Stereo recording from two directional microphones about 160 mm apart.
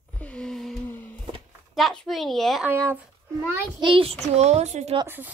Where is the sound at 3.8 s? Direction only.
35° right (ahead or behind).